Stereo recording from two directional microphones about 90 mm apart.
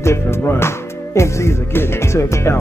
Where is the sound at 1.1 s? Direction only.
30° left (ahead or behind).